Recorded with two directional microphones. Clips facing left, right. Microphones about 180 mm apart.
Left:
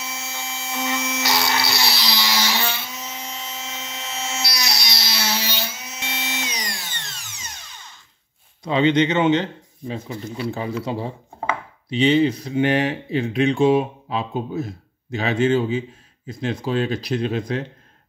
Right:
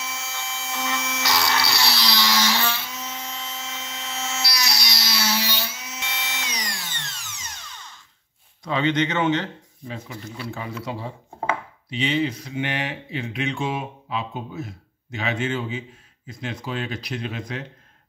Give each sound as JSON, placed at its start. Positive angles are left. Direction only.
{"t": 0.2, "sound": "vacuum cleaner", "side_deg": 10}
{"t": 1.1, "sound": "a sound", "side_deg": 25}
{"t": 5.9, "sound": "drill", "side_deg": 25}
{"t": 8.6, "sound": "speech", "side_deg": 20}